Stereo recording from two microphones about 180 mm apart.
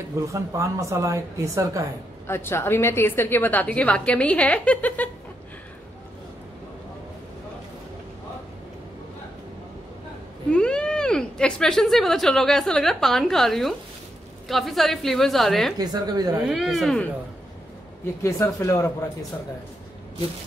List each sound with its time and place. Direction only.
0.3 s speech: 15° right (ahead or behind)
2.2 s a woman's voice: 15° left (ahead or behind)
10.5 s a woman's voice: 5° left (ahead or behind)
15.8 s a woman's voice: 20° right (ahead or behind)
16.5 s a woman's voice: centre (ahead or behind)
18.2 s a woman's voice: 15° left (ahead or behind)